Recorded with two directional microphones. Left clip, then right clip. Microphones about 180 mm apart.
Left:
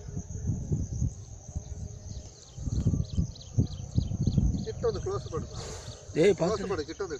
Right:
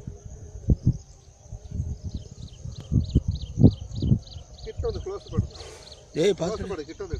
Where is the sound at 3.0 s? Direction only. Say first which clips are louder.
Right 8 dB; 15° left (ahead or behind).